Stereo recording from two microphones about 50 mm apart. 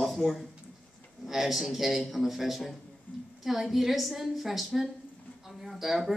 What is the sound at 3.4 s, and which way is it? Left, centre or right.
A woman's voice, centre.